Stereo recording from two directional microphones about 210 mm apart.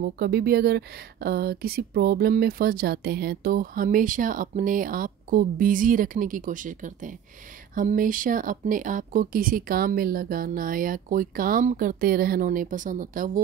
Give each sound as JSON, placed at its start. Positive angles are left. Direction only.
{"t": 0.0, "sound": "a woman's voice", "side_deg": -50}